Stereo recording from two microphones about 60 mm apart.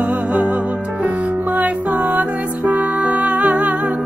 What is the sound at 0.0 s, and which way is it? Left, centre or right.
Music, right.